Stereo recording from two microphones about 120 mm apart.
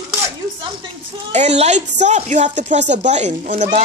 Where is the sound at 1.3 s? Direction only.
70° right (ahead or behind).